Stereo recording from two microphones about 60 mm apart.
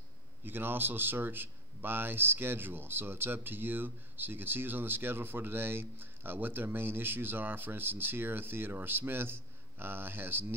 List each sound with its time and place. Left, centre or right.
0.5 s speech: right